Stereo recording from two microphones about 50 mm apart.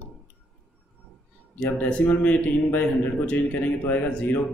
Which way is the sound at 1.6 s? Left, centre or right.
Left.